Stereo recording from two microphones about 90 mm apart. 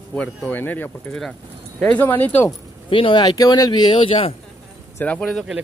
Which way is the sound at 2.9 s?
70° left (ahead or behind).